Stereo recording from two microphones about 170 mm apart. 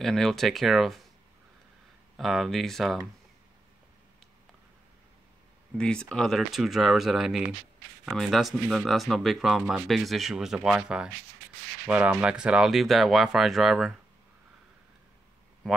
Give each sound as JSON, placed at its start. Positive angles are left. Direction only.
{"t": 0.0, "sound": "speech", "side_deg": 0}
{"t": 2.1, "sound": "speech", "side_deg": 0}
{"t": 5.8, "sound": "speech", "side_deg": 5}